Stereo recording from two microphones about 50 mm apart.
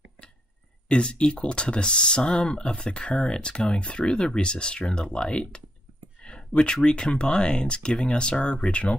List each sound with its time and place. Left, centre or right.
0.8 s speech: left